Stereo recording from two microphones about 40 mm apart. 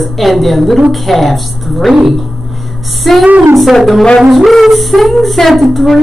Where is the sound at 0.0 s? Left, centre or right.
Centre.